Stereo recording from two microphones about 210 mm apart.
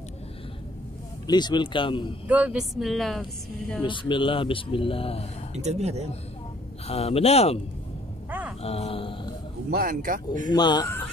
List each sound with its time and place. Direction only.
1.2 s speech: 20° left (ahead or behind)
2.2 s speech: 5° right (ahead or behind)
3.8 s speech: 25° left (ahead or behind)
5.5 s speech: 30° right (ahead or behind)
6.9 s speech: 30° left (ahead or behind)
8.3 s a sound: 5° right (ahead or behind)
8.6 s speech: 30° left (ahead or behind)
9.7 s speech: 45° right (ahead or behind)
10.5 s speech: 20° left (ahead or behind)